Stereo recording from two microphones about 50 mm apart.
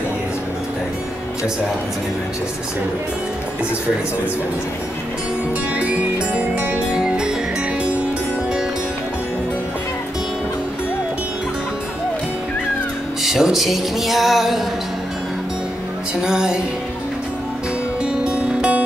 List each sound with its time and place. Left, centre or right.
5.8 s music: right
13.2 s music: centre
16.2 s music: centre
18.0 s music: right